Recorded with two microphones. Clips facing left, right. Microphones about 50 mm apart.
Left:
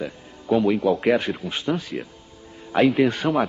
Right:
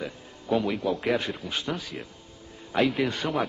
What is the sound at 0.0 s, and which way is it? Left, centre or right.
A man's voice, centre.